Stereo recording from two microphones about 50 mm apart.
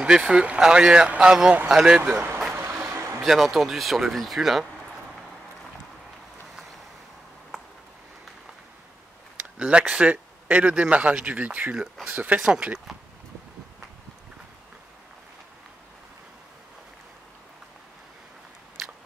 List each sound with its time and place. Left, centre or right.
0.0 s speech: centre
2.0 s speech: right
2.5 s vehicle: right
3.3 s speech: centre
9.6 s speech: right
11.7 s speech: centre
12.3 s speech: right